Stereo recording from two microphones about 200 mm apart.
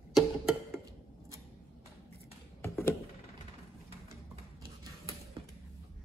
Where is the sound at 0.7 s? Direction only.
15° right (ahead or behind).